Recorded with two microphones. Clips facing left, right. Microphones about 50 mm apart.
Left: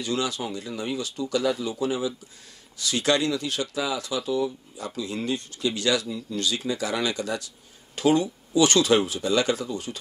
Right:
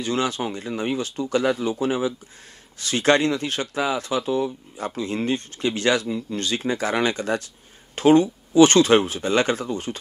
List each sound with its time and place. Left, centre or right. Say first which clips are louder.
0.0 s speech: right 4 dB; right